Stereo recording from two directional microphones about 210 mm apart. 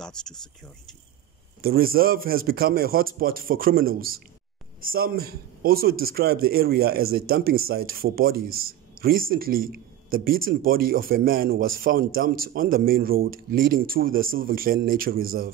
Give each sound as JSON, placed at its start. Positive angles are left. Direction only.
{"t": 1.6, "sound": "a man's voice", "side_deg": -45}